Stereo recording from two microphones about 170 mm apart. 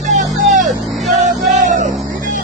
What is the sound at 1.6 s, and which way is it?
Vehicle, 50° right (ahead or behind).